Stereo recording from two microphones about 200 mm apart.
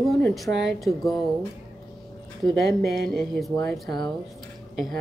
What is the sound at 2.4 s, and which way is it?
Speech, centre (ahead or behind).